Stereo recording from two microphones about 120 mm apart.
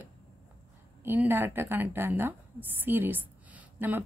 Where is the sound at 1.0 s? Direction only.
15° right (ahead or behind).